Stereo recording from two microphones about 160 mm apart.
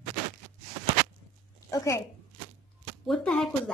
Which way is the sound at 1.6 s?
20° left (ahead or behind).